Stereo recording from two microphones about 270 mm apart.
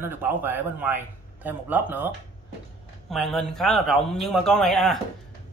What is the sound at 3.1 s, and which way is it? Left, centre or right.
Speech, centre.